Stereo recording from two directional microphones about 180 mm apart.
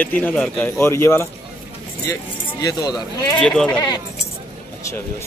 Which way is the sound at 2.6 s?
20° left (ahead or behind).